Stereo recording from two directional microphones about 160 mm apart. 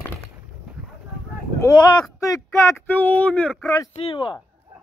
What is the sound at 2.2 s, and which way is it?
Speech, 20° left (ahead or behind).